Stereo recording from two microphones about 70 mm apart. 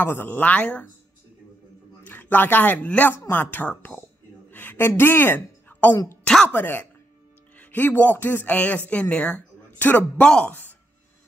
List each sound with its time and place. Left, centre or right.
0.0 s speech: left
2.0 s a man's voice: left
4.5 s a sound: left
6.2 s speech: centre
6.5 s speech: left